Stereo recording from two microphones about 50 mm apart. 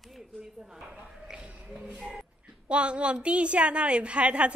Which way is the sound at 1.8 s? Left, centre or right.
Right.